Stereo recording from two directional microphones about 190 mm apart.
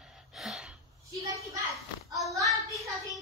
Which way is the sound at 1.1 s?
15° right (ahead or behind).